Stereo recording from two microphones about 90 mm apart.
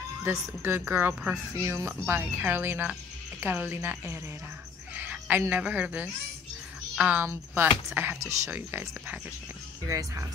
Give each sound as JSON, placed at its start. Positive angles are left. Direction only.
{"t": 0.2, "sound": "speech", "side_deg": -30}
{"t": 4.9, "sound": "a sound", "side_deg": -20}
{"t": 5.5, "sound": "speech", "side_deg": -15}
{"t": 9.8, "sound": "speech", "side_deg": -35}